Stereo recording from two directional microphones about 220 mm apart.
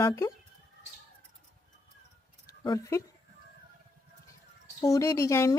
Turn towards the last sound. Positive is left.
turn(degrees=15)  # may be behind; listen again after turning